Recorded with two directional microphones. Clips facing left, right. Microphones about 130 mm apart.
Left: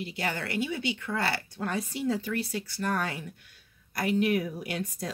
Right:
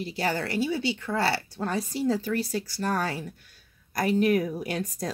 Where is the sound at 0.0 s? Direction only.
35° right (ahead or behind).